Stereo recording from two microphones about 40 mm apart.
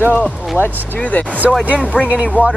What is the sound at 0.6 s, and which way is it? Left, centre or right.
Speech, right.